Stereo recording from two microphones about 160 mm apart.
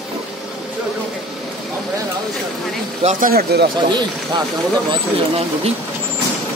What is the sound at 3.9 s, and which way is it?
Speech, 25° right (ahead or behind).